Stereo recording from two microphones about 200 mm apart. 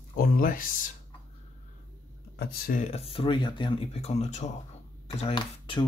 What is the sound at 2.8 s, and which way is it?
Speech, 30° left (ahead or behind).